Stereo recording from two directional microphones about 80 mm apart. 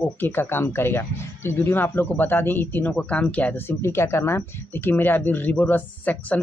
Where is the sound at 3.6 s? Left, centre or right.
Left.